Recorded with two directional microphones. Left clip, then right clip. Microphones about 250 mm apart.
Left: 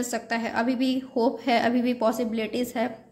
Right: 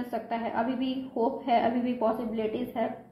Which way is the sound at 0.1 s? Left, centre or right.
Left.